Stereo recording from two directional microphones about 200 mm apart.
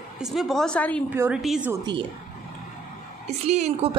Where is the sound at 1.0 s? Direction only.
10° right (ahead or behind).